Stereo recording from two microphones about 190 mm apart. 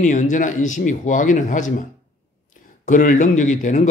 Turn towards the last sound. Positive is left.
turn(degrees=40)  # may be behind; listen again after turning